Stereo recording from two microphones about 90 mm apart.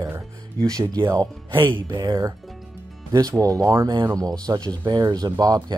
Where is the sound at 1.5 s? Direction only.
25° right (ahead or behind).